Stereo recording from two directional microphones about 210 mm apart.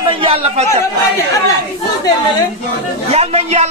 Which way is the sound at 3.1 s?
30° right (ahead or behind).